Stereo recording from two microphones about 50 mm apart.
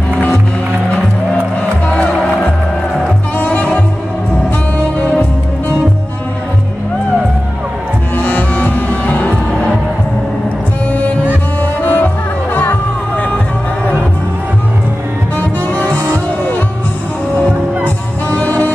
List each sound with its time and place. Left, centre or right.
1.6 s music: left
3.3 s music: left
8.2 s music: left
11.8 s music: left
15.3 s music: left
18.3 s music: left